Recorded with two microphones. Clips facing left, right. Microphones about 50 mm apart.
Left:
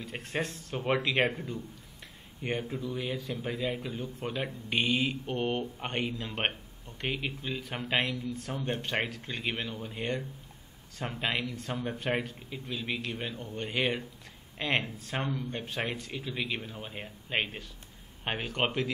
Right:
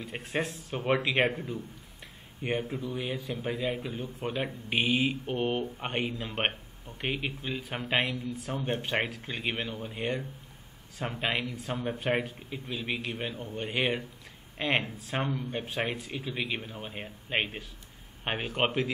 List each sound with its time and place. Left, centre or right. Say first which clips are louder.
0.0 s speech: right 2 dB; centre
2.4 s speech: right 2 dB; centre
8.5 s speech: right 2 dB; centre